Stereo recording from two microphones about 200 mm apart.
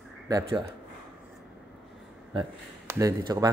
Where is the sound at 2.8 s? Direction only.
20° right (ahead or behind).